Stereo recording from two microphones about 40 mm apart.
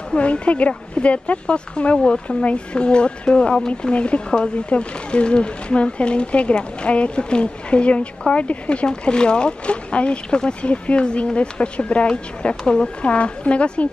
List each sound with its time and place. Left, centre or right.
0.1 s a woman's voice: left
3.9 s a woman's voice: left